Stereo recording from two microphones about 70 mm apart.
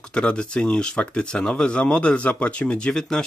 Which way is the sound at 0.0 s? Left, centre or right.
Centre.